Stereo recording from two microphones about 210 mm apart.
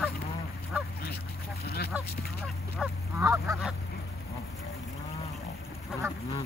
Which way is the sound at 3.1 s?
15° right (ahead or behind).